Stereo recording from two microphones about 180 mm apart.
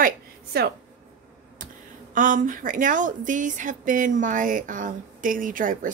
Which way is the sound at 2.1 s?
45° right (ahead or behind).